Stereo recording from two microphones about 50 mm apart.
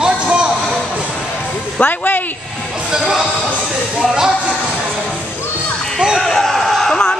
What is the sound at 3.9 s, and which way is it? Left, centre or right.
Speech, centre.